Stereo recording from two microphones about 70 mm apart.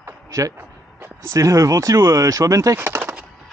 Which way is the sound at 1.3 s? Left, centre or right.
Right.